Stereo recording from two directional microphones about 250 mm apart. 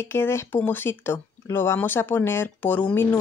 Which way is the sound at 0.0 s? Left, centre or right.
Centre.